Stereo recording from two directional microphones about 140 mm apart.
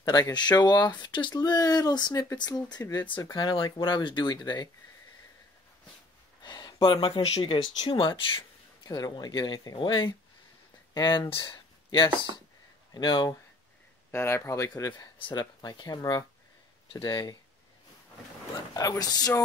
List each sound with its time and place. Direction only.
0.0 s speech: 30° left (ahead or behind)
6.4 s speech: 30° left (ahead or behind)
14.1 s speech: 20° left (ahead or behind)
18.7 s speech: 25° left (ahead or behind)